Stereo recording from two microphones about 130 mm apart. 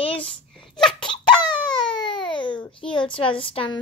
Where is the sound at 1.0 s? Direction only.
35° left (ahead or behind).